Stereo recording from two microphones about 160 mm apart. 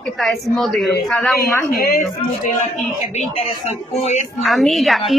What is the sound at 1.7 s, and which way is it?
Speech, 70° left (ahead or behind).